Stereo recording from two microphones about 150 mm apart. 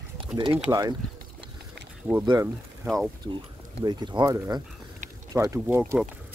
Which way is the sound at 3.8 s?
30° right (ahead or behind).